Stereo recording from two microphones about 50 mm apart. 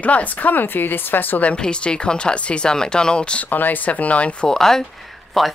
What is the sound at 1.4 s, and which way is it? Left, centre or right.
Speech, left.